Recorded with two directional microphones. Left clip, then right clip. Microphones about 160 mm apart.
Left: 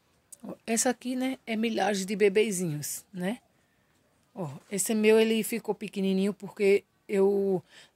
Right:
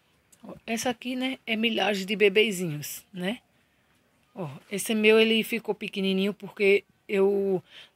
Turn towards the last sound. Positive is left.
turn(degrees=20)  # may be behind; listen again after turning